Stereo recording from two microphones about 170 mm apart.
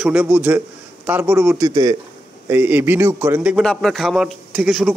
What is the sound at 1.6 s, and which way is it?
Speech, 20° right (ahead or behind).